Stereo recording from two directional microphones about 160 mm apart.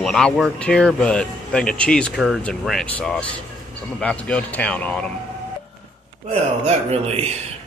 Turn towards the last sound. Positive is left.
turn(degrees=-40)  # may be behind; listen again after turning